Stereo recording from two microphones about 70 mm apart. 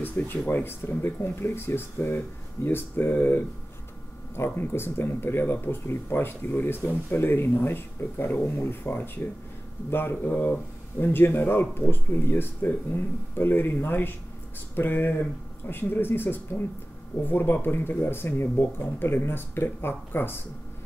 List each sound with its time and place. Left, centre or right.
0.2 s speech: left